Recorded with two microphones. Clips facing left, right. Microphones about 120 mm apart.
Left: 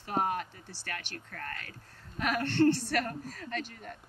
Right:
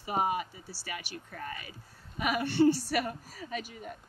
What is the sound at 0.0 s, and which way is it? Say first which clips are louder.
Speech: right 1 dB; 10° right (ahead or behind).